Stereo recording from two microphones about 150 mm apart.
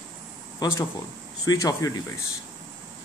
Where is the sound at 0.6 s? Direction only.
20° left (ahead or behind).